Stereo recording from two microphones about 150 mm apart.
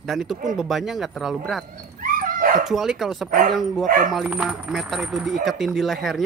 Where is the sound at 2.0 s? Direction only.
65° right (ahead or behind).